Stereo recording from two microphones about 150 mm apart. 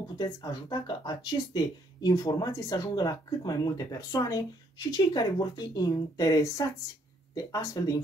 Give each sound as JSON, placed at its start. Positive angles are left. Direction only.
{"t": 0.2, "sound": "speech", "side_deg": 25}